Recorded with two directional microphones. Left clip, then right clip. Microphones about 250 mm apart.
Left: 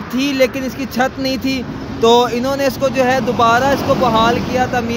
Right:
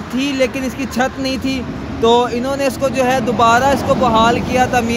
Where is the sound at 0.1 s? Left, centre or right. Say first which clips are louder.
Left 2 dB; centre.